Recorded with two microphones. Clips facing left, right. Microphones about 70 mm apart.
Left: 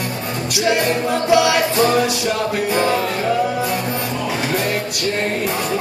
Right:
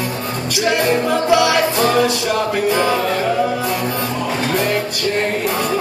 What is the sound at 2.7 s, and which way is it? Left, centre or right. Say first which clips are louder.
Music: left 1 dB; right.